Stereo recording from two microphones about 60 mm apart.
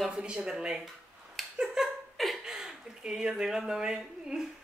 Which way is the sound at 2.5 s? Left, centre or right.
Centre.